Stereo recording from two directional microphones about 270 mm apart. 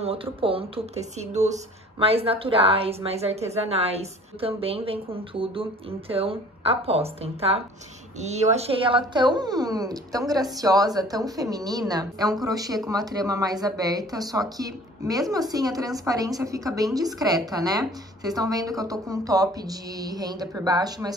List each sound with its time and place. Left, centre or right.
0.0 s speech: right